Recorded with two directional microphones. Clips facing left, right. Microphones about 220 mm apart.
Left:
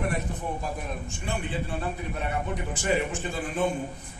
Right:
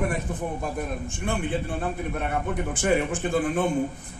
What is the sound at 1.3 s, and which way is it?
Speech, 55° right (ahead or behind).